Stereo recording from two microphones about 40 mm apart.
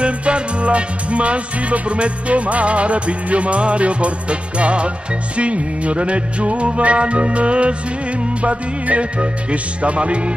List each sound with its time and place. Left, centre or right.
0.0 s music: right